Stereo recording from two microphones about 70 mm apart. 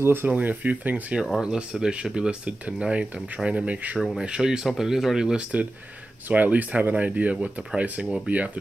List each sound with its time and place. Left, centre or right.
0.0 s speech: right
0.3 s speech: right
1.4 s speech: centre